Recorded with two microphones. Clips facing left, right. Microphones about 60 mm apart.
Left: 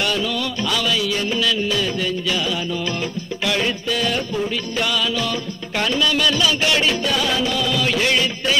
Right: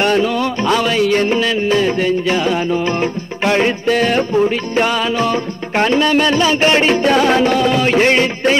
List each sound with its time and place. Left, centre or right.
0.0 s music: right